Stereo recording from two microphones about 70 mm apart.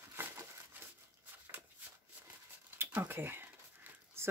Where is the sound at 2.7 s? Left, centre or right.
Right.